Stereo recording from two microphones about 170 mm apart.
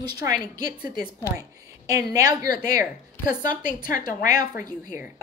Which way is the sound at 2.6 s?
55° left (ahead or behind).